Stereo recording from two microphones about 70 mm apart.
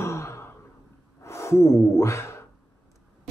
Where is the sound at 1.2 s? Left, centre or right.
Left.